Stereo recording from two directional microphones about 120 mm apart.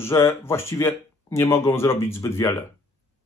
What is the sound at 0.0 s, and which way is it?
Speech, 20° left (ahead or behind).